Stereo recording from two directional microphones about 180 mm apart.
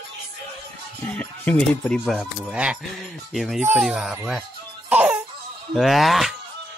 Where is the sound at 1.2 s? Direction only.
5° left (ahead or behind).